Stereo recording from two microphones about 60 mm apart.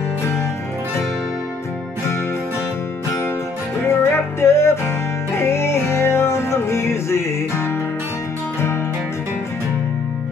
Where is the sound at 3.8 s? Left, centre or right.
Left.